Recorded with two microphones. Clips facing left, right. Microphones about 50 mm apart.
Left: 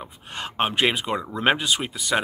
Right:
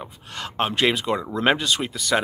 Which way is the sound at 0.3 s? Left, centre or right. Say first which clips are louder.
Even; left.